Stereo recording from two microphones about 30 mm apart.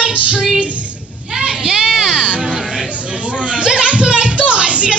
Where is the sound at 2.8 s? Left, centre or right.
Right.